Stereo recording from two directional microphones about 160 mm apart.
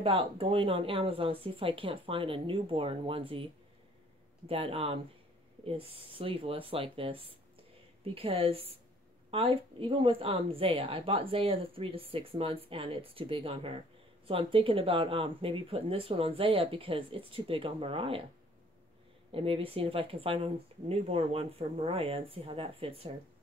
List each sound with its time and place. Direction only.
0.0 s speech: 35° right (ahead or behind)
4.5 s speech: 35° right (ahead or behind)
19.3 s speech: 35° right (ahead or behind)